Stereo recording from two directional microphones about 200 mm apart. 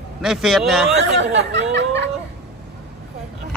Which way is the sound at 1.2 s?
65° right (ahead or behind).